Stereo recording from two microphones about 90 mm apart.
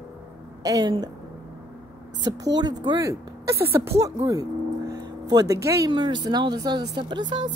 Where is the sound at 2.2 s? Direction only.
50° right (ahead or behind).